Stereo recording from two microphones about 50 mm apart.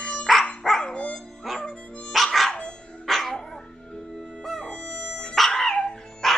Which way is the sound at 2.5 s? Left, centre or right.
Centre.